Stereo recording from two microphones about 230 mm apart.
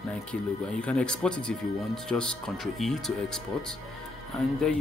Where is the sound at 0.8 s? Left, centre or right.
Centre.